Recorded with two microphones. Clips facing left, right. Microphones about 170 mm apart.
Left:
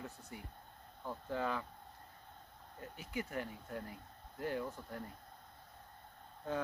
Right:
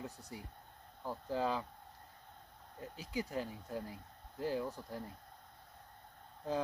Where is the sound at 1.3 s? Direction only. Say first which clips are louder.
Right 2 dB; 30° right (ahead or behind).